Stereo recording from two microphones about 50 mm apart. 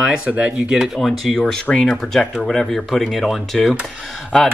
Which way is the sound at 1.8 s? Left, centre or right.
Centre.